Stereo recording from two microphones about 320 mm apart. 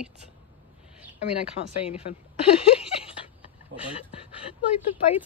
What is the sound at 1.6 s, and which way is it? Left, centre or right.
Speech, left.